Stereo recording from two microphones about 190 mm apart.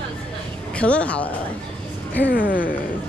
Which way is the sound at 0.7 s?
5° left (ahead or behind).